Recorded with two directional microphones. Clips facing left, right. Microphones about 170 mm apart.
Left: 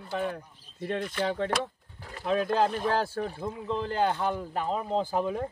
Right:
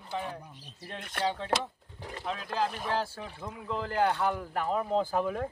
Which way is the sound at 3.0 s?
50° left (ahead or behind).